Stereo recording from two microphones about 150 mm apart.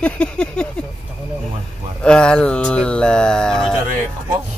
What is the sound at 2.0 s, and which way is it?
Speech, 5° left (ahead or behind).